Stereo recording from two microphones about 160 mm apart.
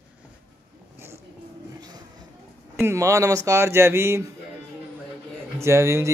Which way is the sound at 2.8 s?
15° right (ahead or behind).